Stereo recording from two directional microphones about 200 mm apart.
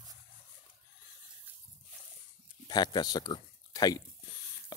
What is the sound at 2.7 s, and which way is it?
Speech, 20° left (ahead or behind).